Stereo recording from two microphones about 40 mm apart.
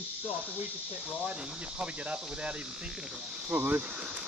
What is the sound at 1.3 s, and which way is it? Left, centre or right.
Speech, right.